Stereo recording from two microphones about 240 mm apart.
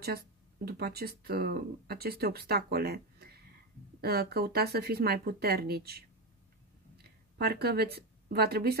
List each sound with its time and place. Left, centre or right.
0.0 s speech: right